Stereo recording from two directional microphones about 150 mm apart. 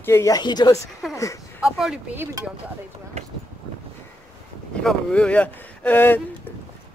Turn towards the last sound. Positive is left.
turn(degrees=15)  # may be behind; listen again after turning